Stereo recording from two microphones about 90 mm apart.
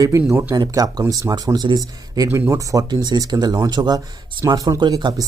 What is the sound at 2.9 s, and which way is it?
Speech, 55° right (ahead or behind).